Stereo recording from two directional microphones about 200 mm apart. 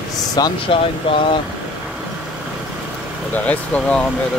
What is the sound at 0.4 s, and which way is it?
Speech, 25° left (ahead or behind).